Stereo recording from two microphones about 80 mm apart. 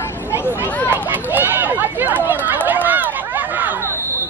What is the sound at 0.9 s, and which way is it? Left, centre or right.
Chatter, right.